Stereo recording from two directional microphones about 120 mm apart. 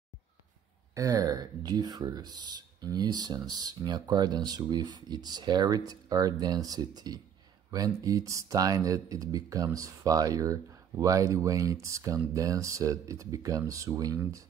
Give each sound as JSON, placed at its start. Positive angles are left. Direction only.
{"t": 0.9, "sound": "speech", "side_deg": -30}